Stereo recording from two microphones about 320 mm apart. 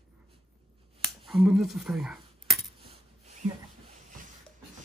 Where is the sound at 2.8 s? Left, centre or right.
Centre.